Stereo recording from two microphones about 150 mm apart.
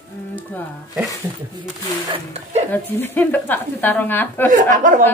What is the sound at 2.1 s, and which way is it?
Speech, 45° right (ahead or behind).